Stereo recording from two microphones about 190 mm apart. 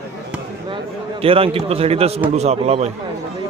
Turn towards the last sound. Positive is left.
turn(degrees=-35)  # may be behind; listen again after turning